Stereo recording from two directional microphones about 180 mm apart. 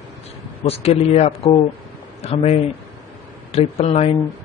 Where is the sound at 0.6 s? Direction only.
35° left (ahead or behind).